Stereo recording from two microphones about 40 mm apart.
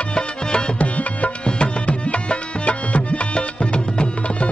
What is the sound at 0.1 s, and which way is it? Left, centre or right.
Music, left.